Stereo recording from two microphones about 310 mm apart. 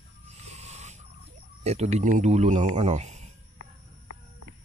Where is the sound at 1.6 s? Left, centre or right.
Right.